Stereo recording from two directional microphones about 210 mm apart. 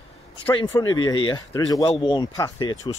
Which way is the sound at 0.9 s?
20° left (ahead or behind).